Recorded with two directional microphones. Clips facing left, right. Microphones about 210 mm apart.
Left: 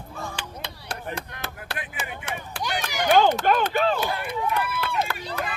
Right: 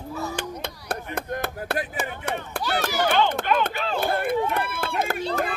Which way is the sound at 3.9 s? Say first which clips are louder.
Right 5 dB; 55° right (ahead or behind).